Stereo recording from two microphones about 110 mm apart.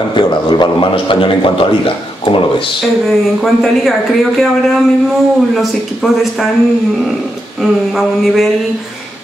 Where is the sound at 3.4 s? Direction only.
Centre (ahead or behind).